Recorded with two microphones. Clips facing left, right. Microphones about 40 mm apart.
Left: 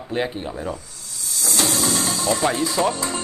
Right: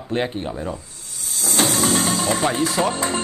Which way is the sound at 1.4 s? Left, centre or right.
Right.